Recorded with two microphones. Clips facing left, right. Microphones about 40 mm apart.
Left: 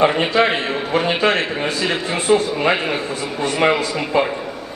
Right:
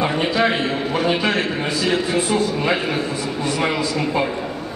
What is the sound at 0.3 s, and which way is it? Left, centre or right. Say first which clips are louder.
A man's voice: left 2 dB; left.